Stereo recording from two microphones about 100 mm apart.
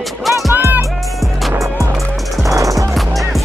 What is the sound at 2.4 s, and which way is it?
Music, 35° right (ahead or behind).